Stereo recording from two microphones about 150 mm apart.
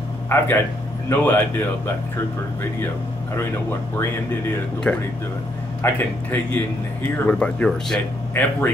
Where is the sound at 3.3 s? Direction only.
15° left (ahead or behind).